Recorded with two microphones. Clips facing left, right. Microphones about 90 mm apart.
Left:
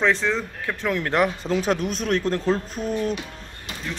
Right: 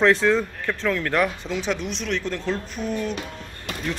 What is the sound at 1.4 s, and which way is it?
Speech, 40° left (ahead or behind).